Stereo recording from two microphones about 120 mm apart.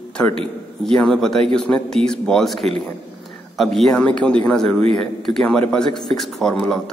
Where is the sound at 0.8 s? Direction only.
5° left (ahead or behind).